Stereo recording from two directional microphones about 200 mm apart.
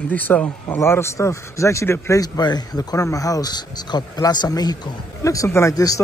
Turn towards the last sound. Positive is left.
turn(degrees=15)  # may be behind; listen again after turning